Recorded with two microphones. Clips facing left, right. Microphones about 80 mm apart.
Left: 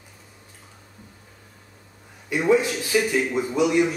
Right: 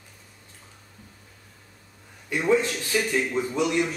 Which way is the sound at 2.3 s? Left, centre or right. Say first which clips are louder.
Left 3 dB; centre.